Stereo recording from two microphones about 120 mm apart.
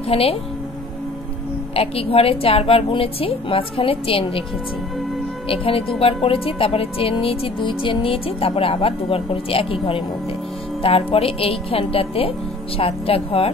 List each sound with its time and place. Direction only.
0.1 s a woman's voice: 55° left (ahead or behind)
1.8 s speech: 55° left (ahead or behind)
5.5 s speech: 50° left (ahead or behind)